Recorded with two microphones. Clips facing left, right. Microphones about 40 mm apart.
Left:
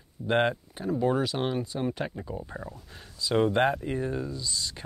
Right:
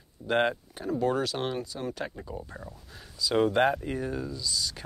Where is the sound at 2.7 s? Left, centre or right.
Centre.